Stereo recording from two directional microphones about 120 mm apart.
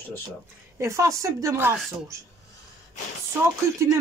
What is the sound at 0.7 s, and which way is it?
A woman's voice, 25° right (ahead or behind).